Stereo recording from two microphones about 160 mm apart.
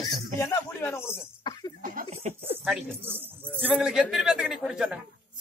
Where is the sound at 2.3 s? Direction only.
50° right (ahead or behind).